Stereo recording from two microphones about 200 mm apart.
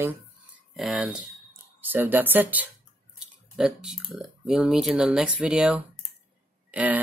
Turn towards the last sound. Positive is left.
turn(degrees=-5)  # may be behind; listen again after turning